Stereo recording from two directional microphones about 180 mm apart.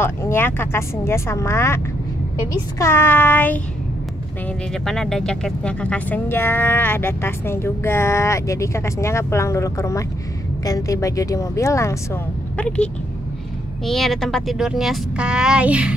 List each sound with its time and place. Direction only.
0.0 s speech: 15° left (ahead or behind)
2.8 s speech: 15° left (ahead or behind)
4.8 s speech: 5° left (ahead or behind)